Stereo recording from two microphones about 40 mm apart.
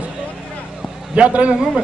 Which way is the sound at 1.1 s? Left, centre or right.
Right.